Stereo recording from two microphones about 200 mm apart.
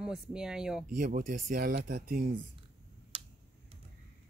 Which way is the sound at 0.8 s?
40° right (ahead or behind).